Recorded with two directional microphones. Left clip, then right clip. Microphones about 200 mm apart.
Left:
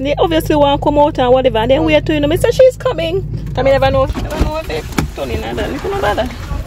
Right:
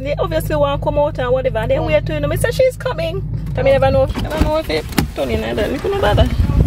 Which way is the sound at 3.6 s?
5° left (ahead or behind).